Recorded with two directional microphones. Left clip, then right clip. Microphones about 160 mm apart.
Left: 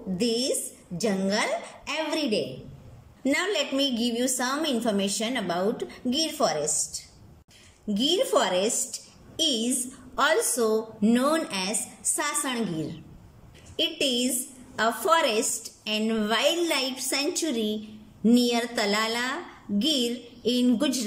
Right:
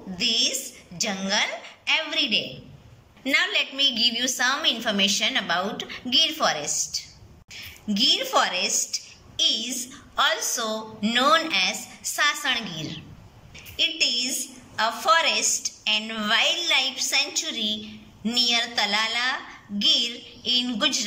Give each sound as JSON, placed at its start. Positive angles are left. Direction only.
{"t": 0.2, "sound": "a woman's voice", "side_deg": 45}
{"t": 13.7, "sound": "a woman's voice", "side_deg": 50}